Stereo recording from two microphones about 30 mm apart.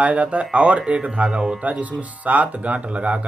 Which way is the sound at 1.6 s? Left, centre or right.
Right.